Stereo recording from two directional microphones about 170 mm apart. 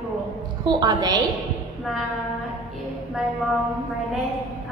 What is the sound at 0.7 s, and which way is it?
Speech, 25° right (ahead or behind).